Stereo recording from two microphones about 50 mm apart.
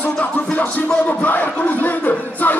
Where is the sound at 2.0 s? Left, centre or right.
Left.